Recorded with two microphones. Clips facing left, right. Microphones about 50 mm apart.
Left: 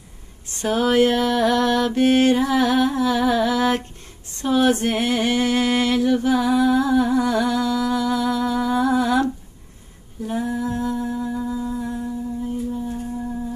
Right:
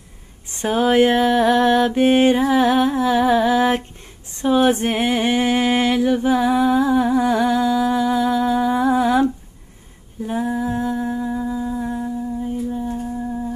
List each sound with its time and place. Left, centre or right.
0.5 s mantra: right
4.3 s a sound: right
10.7 s humming: right